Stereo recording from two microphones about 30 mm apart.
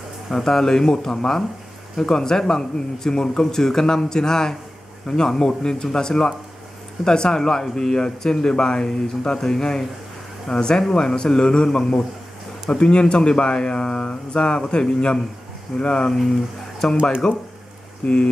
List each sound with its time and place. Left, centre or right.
0.3 s speech: centre; by 16.1 s left
16.8 s speech: centre
17.2 s speech: left